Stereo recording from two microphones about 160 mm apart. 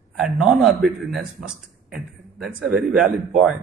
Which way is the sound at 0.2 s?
5° right (ahead or behind).